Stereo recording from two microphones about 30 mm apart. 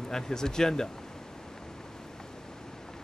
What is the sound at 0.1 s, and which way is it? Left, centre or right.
Speech, left.